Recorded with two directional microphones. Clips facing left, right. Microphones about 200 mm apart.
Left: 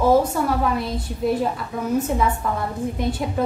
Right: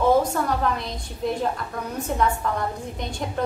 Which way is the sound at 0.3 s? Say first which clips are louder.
Left 3 dB; 5° left (ahead or behind).